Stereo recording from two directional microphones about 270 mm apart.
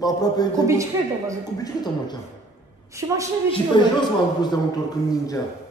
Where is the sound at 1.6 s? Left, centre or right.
Centre.